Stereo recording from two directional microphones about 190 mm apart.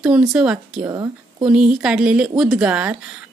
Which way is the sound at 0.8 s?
20° right (ahead or behind).